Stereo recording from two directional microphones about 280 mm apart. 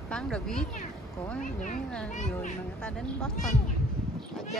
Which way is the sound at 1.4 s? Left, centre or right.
Left.